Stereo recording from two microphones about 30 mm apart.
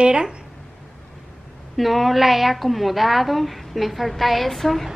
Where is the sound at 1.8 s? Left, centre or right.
Centre.